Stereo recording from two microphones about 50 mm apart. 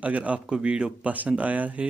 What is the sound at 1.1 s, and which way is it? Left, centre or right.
Speech, right.